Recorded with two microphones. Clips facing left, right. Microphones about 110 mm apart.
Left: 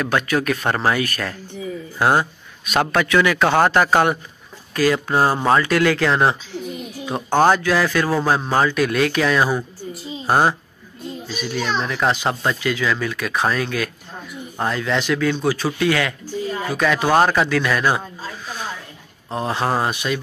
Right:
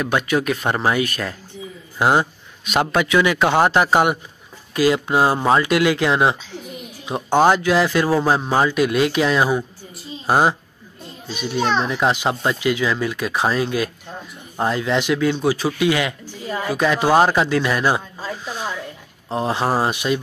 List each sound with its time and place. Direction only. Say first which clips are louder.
0.0 s speech: even; 20° right (ahead or behind)
8.3 s speech: even; 10° right (ahead or behind)
10.2 s speech: even; 5° right (ahead or behind)
11.3 s speech: right 4 dB; 25° right (ahead or behind)
19.3 s speech: right 1 dB; 25° right (ahead or behind)